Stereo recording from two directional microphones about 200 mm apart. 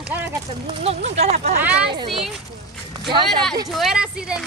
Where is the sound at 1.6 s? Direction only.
5° right (ahead or behind).